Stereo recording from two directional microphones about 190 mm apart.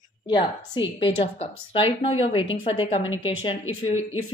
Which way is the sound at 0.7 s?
25° left (ahead or behind).